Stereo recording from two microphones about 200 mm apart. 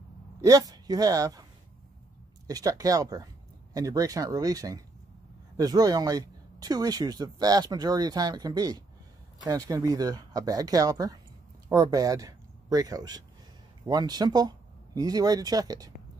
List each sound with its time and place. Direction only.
0.4 s speech: 20° right (ahead or behind)
2.4 s speech: 20° right (ahead or behind)